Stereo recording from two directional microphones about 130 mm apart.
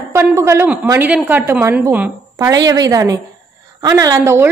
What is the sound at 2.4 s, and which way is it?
A woman's voice, 30° right (ahead or behind).